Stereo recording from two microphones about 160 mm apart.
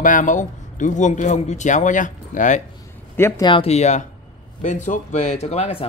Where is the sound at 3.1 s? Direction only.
15° left (ahead or behind).